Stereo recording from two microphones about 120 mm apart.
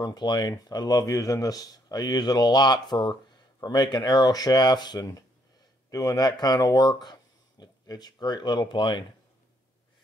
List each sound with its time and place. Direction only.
0.0 s speech: 35° left (ahead or behind)